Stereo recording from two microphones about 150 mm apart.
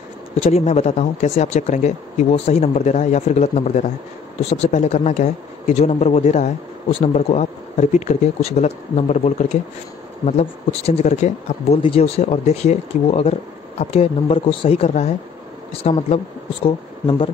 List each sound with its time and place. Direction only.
0.4 s speech: 40° left (ahead or behind)
11.8 s speech: 40° left (ahead or behind)